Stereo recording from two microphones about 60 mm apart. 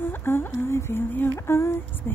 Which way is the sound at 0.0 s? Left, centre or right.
Left.